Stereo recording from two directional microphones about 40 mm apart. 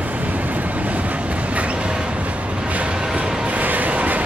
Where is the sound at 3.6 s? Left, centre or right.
Right.